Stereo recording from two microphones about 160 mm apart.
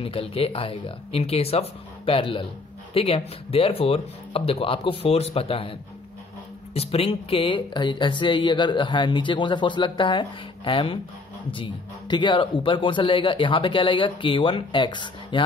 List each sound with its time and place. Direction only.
0.0 s speech: 35° left (ahead or behind)